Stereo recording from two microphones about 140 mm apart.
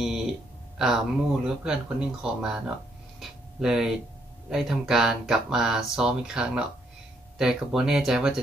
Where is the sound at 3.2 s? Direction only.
5° right (ahead or behind).